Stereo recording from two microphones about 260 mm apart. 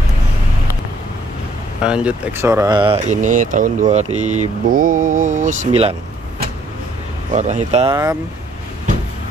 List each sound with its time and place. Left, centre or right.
1.8 s speech: centre; by 5.9 s right
7.3 s speech: right